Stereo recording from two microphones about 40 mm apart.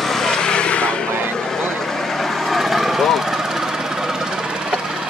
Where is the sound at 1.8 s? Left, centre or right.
Centre.